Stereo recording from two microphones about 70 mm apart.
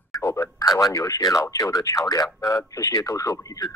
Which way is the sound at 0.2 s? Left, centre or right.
Left.